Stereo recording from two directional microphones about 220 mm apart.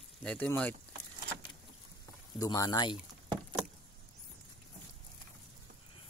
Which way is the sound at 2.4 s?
15° left (ahead or behind).